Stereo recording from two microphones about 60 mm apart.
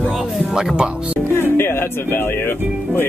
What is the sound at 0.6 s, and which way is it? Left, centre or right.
Speech, centre.